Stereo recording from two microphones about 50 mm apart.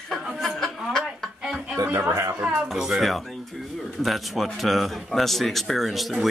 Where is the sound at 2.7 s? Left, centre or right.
Centre.